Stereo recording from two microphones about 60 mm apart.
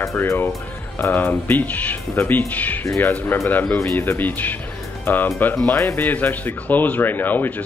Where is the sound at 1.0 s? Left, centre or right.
Left.